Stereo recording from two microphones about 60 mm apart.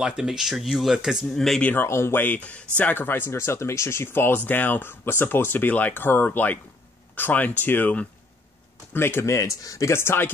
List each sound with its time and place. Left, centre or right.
0.0 s speech: centre
1.3 s speech: centre
1.8 s speech: left
3.3 s speech: left
9.2 s speech: left
9.9 s speech: left